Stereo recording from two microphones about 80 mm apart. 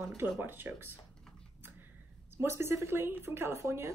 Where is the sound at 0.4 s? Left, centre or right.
Right.